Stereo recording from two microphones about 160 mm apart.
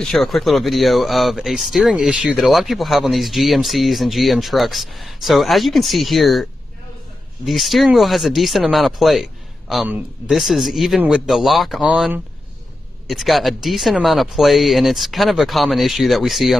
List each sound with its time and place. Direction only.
0.0 s speech: centre (ahead or behind)
7.4 s speech: centre (ahead or behind)
10.3 s speech: centre (ahead or behind)